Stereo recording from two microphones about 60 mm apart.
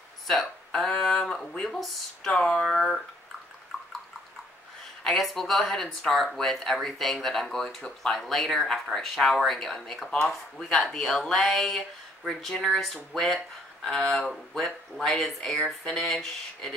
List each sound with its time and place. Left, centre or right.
0.3 s speech: centre
2.3 s speech: centre
2.6 s speech: centre
5.0 s speech: centre